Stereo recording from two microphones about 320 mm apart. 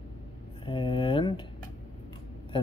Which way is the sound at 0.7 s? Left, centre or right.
Centre.